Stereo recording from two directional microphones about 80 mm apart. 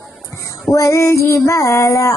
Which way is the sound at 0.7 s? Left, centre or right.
Left.